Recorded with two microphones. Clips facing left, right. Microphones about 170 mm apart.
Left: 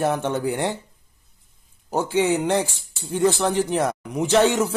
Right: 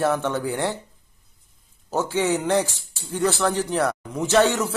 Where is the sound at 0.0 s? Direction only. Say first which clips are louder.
Even; 15° left (ahead or behind).